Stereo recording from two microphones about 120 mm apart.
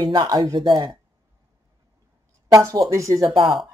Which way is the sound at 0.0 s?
35° right (ahead or behind).